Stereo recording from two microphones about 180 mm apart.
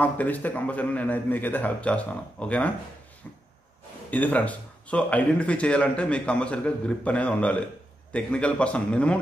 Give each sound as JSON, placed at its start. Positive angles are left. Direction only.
{"t": 0.0, "sound": "speech", "side_deg": 10}
{"t": 4.1, "sound": "speech", "side_deg": 10}